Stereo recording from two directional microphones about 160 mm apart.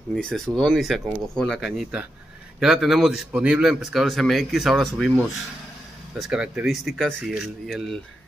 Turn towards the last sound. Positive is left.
turn(degrees=0)  # may be behind; listen again after turning